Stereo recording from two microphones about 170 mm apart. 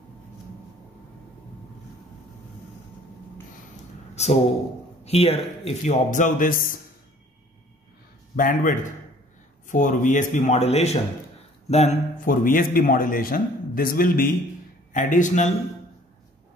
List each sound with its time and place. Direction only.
4.1 s a sound: 40° left (ahead or behind)
5.0 s speech: 35° left (ahead or behind)
6.0 s speech: 50° left (ahead or behind)
8.4 s a man's voice: 50° left (ahead or behind)